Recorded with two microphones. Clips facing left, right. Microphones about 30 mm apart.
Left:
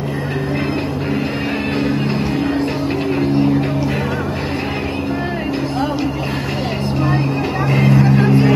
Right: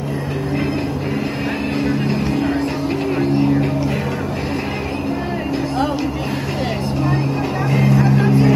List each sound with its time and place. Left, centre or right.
7.7 s vehicle: left